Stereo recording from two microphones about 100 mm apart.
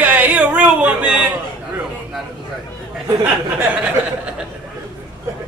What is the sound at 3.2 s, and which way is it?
Speech, 10° right (ahead or behind).